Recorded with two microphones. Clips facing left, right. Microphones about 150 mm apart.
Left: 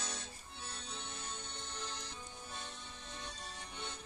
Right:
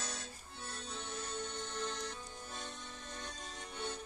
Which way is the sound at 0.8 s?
45° right (ahead or behind).